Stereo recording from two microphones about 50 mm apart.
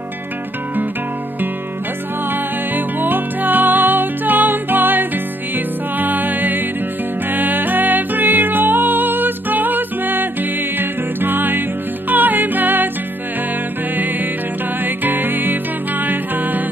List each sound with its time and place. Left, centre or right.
2.7 s music: right
15.0 s music: right